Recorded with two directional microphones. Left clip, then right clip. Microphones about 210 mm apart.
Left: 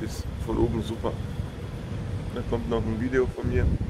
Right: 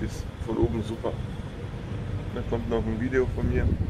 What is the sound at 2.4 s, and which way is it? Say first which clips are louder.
Speech: even; centre (ahead or behind).